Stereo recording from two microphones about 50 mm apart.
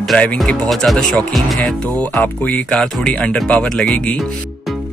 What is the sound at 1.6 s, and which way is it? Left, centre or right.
Speech, left.